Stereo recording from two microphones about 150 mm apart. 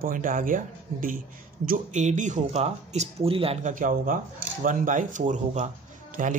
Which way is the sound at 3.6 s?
60° right (ahead or behind).